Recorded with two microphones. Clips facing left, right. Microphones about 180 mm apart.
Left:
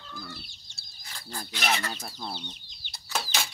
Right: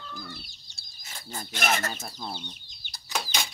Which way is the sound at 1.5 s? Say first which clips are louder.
Right 2 dB; 50° right (ahead or behind).